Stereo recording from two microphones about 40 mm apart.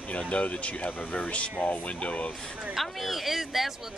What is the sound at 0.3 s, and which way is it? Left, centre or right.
Speech, left.